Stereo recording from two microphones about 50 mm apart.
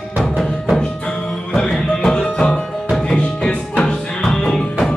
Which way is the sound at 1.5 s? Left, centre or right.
Centre.